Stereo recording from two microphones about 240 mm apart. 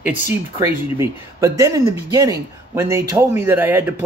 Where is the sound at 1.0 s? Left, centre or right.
Centre.